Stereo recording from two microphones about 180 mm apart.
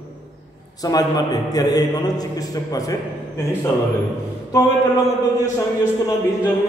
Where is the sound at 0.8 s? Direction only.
20° left (ahead or behind).